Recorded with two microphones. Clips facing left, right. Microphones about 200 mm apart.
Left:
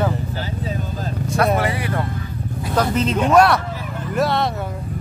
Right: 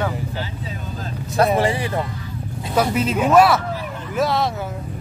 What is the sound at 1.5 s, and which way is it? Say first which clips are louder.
Speech: right 2 dB; 25° right (ahead or behind).